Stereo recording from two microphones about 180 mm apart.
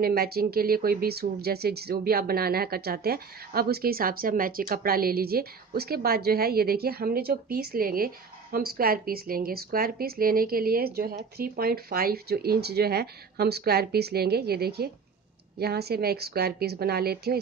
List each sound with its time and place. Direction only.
0.0 s speech: 60° right (ahead or behind)